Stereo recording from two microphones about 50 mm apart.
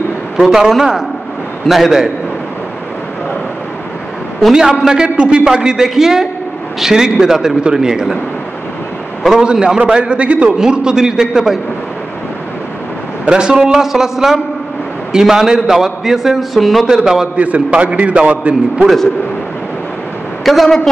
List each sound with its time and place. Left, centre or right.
0.4 s a man's voice: centre
4.6 s a man's voice: centre
9.2 s a man's voice: centre
9.5 s a man's voice: centre
10.6 s a man's voice: centre
13.3 s a man's voice: centre
16.8 s a man's voice: centre
17.4 s a man's voice: right
20.4 s a woman's voice: centre